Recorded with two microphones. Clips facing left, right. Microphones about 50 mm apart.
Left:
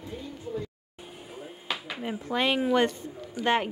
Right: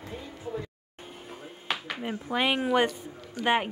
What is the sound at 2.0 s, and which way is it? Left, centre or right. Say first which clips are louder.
Speech: even; centre.